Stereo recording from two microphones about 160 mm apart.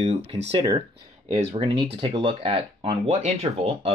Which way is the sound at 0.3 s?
30° right (ahead or behind).